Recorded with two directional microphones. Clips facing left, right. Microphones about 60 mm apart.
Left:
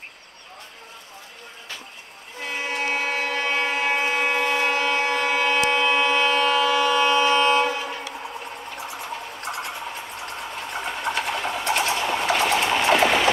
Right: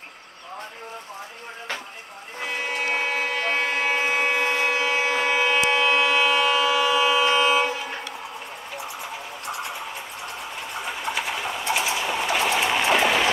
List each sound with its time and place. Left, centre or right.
2.9 s a sound: centre
5.7 s vehicle: centre
10.9 s train: centre